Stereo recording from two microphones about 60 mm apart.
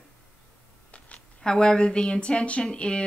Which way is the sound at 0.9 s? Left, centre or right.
Left.